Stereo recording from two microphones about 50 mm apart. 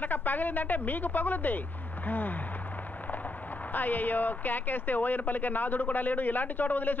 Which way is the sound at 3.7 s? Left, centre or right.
Left.